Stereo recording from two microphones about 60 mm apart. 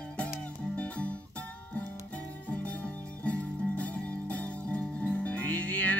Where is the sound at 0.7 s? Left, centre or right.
Left.